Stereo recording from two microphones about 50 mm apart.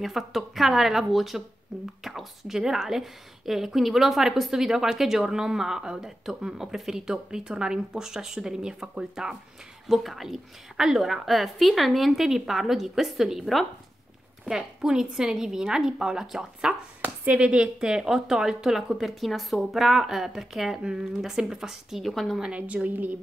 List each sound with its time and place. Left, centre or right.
0.0 s a woman's voice: centre
17.0 s a woman's voice: right; by 22.4 s centre
22.6 s a woman's voice: right